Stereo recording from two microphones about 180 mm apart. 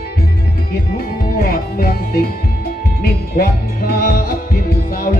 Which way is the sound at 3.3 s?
55° left (ahead or behind).